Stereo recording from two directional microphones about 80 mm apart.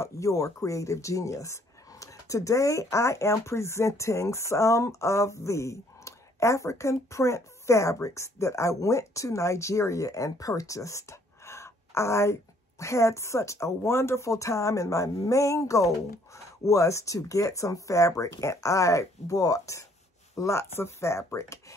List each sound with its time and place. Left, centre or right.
0.0 s speech: left